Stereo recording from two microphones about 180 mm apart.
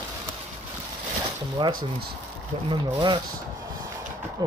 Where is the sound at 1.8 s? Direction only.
60° right (ahead or behind).